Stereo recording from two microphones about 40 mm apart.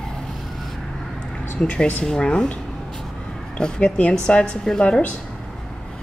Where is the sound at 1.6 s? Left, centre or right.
Left.